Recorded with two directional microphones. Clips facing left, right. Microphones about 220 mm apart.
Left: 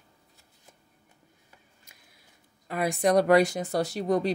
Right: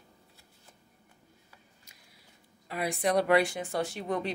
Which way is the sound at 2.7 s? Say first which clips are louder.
Left 5 dB; 45° left (ahead or behind).